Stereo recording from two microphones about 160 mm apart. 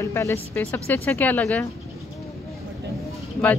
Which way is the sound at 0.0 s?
15° left (ahead or behind).